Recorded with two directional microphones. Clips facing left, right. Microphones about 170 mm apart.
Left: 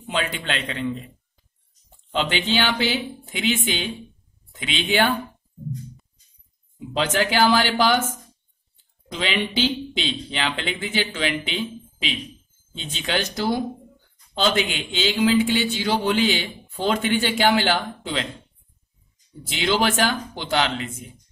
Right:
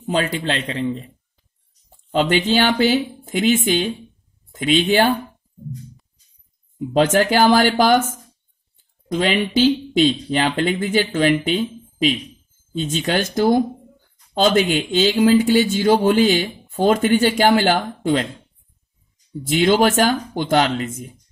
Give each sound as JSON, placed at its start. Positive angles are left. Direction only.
{"t": 0.1, "sound": "speech", "side_deg": -35}
{"t": 2.0, "sound": "speech", "side_deg": -45}
{"t": 7.0, "sound": "speech", "side_deg": -45}
{"t": 9.1, "sound": "speech", "side_deg": -45}
{"t": 19.6, "sound": "speech", "side_deg": -45}